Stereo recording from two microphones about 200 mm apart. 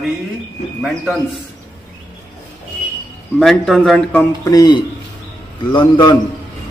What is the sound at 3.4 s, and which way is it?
Speech, centre (ahead or behind).